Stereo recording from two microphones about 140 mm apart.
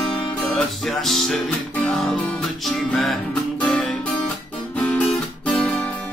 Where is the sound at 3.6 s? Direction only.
10° left (ahead or behind).